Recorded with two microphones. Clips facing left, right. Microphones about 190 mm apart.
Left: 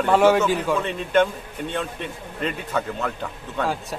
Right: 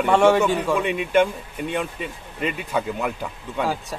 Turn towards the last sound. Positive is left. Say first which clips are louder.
# right 1 dB
turn(degrees=-5)  # may be behind; listen again after turning